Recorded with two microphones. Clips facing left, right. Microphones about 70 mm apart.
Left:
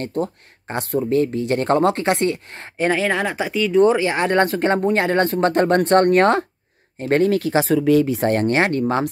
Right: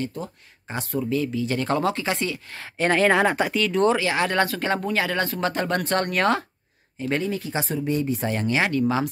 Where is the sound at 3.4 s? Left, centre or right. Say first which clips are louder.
Left 5 dB; centre; by 6.4 s left.